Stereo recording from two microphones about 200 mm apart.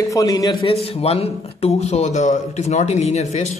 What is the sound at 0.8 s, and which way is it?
Speech, 30° left (ahead or behind).